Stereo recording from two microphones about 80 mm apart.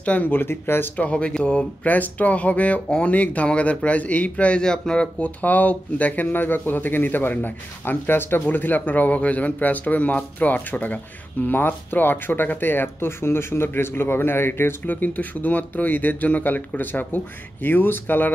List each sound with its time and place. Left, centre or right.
0.0 s speech: centre